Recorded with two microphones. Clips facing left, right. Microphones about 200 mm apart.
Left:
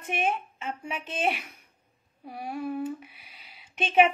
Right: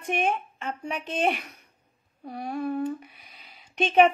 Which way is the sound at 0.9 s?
40° right (ahead or behind).